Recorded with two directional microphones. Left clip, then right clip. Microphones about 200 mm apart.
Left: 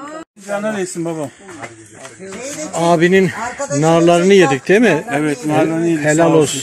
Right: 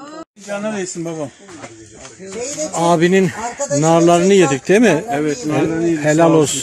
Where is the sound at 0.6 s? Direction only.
Centre (ahead or behind).